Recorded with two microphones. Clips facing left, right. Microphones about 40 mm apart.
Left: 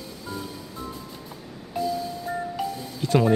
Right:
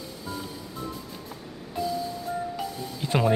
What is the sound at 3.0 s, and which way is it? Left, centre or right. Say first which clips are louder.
Music: left 4 dB; centre.